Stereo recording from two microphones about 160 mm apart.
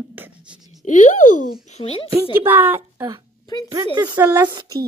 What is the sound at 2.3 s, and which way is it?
Speech, 15° right (ahead or behind).